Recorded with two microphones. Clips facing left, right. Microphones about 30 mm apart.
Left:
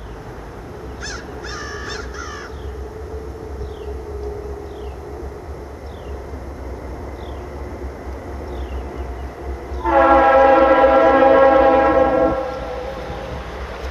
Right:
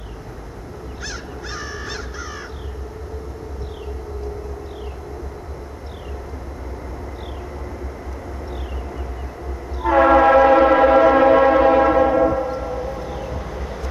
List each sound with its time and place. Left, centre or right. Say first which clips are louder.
1.0 s crow: left 1 dB; centre
9.8 s train: left 1 dB; centre
12.4 s train: right 1 dB; left
13.1 s train: even; left